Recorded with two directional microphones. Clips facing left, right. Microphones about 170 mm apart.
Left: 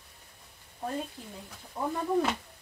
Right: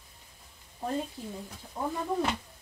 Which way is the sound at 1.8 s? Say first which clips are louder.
Even; centre (ahead or behind).